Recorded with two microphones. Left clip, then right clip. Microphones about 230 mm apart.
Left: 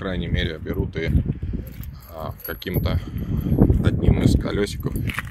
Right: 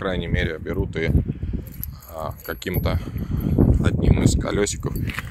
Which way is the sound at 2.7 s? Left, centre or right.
Centre.